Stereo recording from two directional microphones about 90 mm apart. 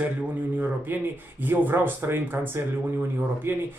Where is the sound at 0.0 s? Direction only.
20° right (ahead or behind).